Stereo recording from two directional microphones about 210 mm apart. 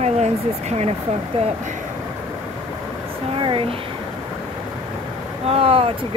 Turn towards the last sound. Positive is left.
turn(degrees=-30)  # may be behind; listen again after turning